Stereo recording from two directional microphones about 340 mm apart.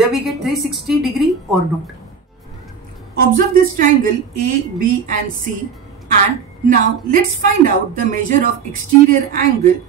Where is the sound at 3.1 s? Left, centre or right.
Right.